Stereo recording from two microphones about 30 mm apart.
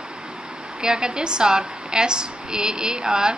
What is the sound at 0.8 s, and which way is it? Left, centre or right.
A woman's voice, right.